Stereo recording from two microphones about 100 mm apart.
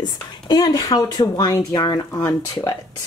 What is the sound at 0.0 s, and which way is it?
Speech, 40° left (ahead or behind).